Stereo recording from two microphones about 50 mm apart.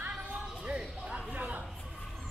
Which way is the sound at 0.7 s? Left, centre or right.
Centre.